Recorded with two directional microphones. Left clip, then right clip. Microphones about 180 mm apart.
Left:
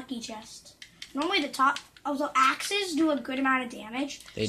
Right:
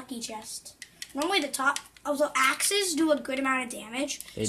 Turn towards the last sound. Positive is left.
turn(degrees=0)  # may be behind; listen again after turning